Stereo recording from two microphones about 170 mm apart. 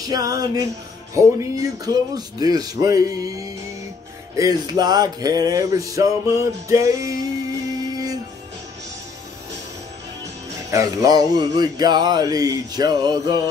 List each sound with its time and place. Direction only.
0.1 s music: 20° right (ahead or behind)
10.7 s music: 20° right (ahead or behind)